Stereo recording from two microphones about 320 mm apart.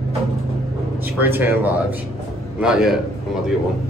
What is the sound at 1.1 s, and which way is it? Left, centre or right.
A man's voice, centre.